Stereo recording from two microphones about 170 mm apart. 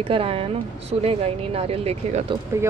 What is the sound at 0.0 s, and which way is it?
Speech, 35° right (ahead or behind).